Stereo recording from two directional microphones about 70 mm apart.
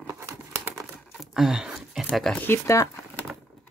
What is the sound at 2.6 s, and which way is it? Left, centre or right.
Speech, left.